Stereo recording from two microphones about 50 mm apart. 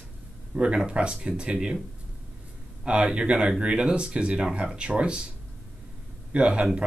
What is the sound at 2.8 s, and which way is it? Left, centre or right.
Speech, centre.